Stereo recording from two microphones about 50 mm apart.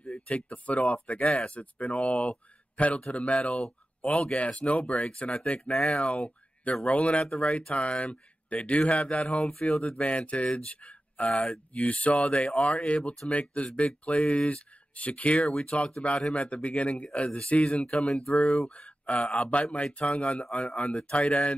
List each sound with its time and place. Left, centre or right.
0.0 s speech: left
3.4 s speech: centre
4.0 s speech: left
9.8 s speech: centre
10.0 s speech: left
18.0 s speech: centre
18.8 s a sound: left
19.2 s speech: centre